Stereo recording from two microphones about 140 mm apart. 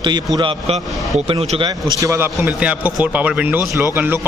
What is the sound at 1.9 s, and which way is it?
A man's voice, 20° right (ahead or behind).